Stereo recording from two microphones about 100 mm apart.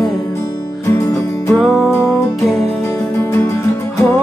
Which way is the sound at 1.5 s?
Centre (ahead or behind).